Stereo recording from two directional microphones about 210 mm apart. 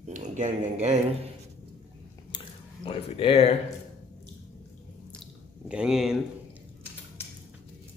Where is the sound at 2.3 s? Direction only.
25° left (ahead or behind).